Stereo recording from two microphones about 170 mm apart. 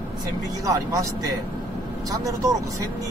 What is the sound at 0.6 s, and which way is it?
Speech, 20° right (ahead or behind).